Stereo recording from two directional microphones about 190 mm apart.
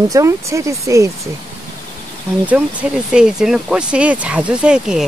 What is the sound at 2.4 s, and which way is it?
Speech, 5° right (ahead or behind).